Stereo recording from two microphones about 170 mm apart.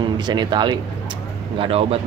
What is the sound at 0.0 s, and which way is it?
Speech, 25° right (ahead or behind).